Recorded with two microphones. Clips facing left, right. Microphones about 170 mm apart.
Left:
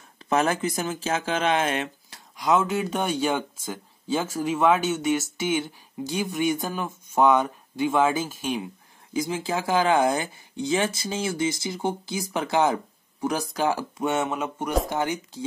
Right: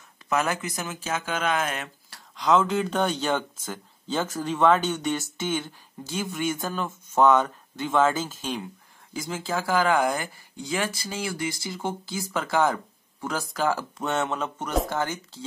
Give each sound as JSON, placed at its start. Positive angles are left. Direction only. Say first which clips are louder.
{"t": 0.3, "sound": "speech", "louder": "left 3 dB", "side_deg": 30}